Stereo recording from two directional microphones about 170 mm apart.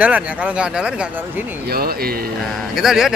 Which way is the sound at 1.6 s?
65° right (ahead or behind).